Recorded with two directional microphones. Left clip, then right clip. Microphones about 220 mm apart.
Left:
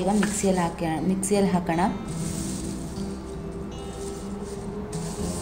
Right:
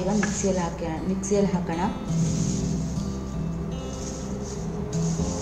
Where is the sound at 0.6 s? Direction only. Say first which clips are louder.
Left 3 dB; 45° left (ahead or behind).